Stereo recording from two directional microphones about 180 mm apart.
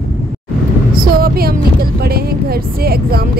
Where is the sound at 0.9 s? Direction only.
55° right (ahead or behind).